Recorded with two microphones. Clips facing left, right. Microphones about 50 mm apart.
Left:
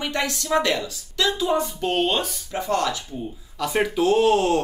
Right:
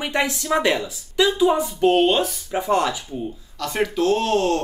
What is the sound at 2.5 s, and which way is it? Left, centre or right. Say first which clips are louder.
Speech: right 2 dB; centre.